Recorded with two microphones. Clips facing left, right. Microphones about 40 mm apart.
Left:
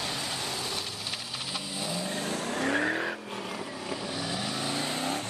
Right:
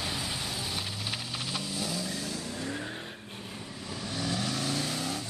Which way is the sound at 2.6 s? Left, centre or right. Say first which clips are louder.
Left 11 dB; left.